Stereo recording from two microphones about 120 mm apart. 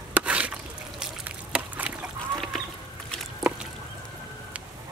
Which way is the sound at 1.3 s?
10° right (ahead or behind).